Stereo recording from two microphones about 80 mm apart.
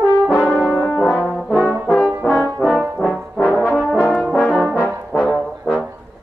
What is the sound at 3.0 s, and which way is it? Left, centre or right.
Brass instrument, centre.